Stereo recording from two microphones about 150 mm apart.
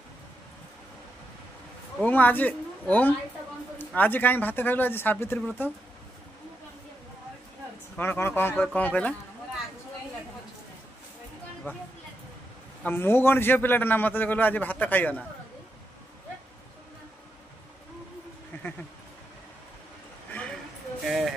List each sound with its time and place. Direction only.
2.0 s a woman's voice: 10° left (ahead or behind)
8.0 s a man's voice: 15° left (ahead or behind)
11.7 s a man's voice: 10° left (ahead or behind)
12.8 s a man's voice: 15° left (ahead or behind)
18.5 s a sound: 15° left (ahead or behind)
20.2 s a sound: 10° left (ahead or behind)
21.0 s speech: centre (ahead or behind)